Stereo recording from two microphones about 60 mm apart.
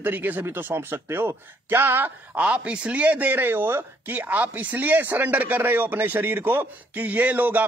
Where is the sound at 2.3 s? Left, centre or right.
Right.